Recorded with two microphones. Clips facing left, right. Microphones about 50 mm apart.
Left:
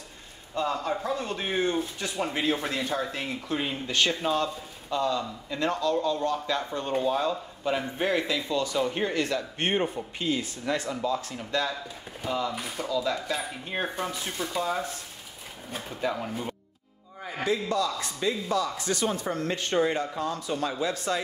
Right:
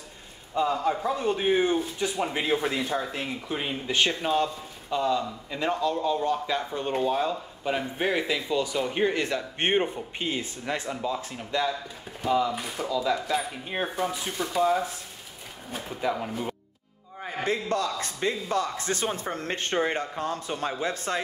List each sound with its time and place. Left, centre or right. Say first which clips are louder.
0.6 s speech: right 3 dB; centre
15.7 s speech: right 1 dB; centre
17.4 s speech: even; right